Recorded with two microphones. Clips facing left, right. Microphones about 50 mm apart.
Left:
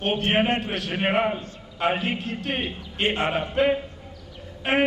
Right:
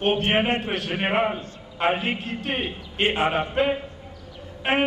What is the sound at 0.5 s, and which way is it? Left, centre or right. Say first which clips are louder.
A man's voice: right 1 dB; right.